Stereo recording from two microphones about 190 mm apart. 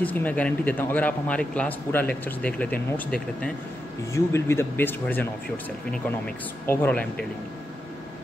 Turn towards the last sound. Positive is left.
turn(degrees=5)  # may be behind; listen again after turning